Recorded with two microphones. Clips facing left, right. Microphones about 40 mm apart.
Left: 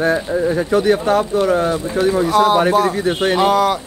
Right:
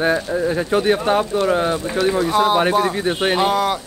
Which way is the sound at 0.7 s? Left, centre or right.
Right.